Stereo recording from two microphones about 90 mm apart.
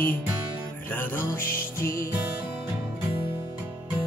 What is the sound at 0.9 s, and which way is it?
Music, 25° left (ahead or behind).